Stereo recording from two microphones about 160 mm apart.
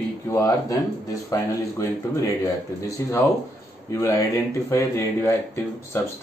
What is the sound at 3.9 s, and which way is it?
Speech, 20° left (ahead or behind).